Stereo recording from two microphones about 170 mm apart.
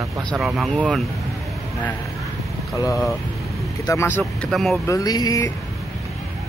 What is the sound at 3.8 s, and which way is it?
Speech, 20° left (ahead or behind).